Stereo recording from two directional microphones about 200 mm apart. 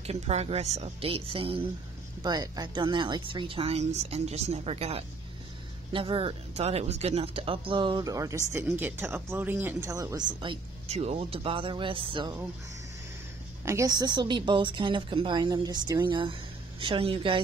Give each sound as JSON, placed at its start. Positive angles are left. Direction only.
{"t": 0.0, "sound": "speech", "side_deg": -30}
{"t": 13.7, "sound": "speech", "side_deg": -15}